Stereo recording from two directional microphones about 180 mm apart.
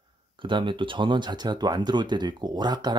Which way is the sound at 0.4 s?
25° right (ahead or behind).